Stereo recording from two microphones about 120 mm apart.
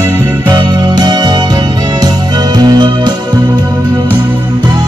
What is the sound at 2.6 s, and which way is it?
Music, 35° right (ahead or behind).